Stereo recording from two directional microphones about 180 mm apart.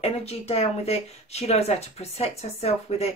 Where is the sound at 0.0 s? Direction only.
35° left (ahead or behind).